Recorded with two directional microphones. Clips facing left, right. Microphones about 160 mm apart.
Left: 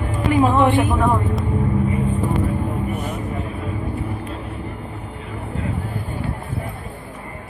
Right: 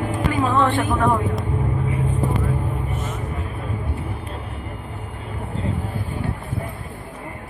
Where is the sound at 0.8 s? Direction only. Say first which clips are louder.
Left 1 dB; centre (ahead or behind).